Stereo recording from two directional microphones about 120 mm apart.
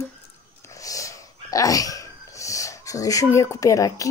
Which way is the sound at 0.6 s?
25° left (ahead or behind).